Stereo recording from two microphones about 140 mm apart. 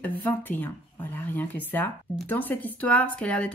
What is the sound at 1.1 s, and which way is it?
A woman's voice, 15° left (ahead or behind).